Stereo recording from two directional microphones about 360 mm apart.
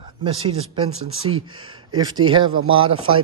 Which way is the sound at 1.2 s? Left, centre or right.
Centre.